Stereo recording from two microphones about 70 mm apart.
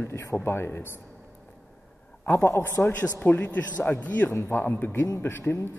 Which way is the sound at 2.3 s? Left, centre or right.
Left.